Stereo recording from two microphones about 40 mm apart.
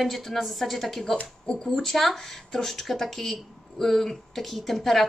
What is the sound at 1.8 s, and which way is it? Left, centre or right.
Speech, centre.